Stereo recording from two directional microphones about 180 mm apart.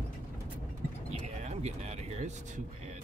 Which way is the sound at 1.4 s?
40° right (ahead or behind).